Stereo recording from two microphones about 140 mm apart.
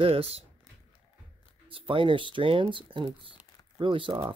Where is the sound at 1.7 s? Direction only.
40° right (ahead or behind).